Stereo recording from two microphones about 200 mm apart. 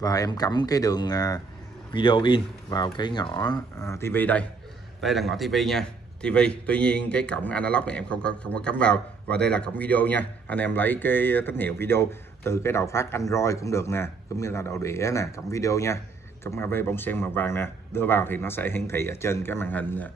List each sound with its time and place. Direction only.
0.0 s a man's voice: 20° left (ahead or behind)